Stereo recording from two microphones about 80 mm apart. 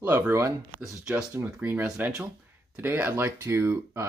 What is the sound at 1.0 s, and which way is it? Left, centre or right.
Speech, centre.